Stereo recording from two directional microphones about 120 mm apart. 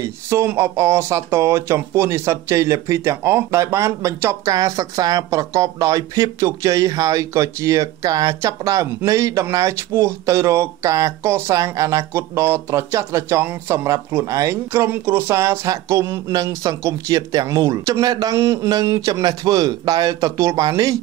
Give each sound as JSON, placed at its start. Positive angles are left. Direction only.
{"t": 0.0, "sound": "speech", "side_deg": -20}